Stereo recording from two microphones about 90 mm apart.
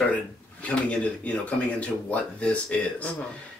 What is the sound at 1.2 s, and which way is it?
Speech, 15° left (ahead or behind).